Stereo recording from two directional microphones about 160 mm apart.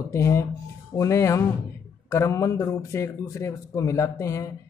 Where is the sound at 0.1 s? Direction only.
15° left (ahead or behind).